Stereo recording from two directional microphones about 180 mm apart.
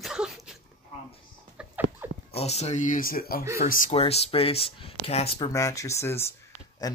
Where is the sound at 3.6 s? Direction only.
45° left (ahead or behind).